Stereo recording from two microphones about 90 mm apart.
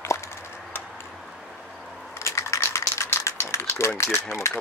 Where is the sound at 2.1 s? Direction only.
30° left (ahead or behind).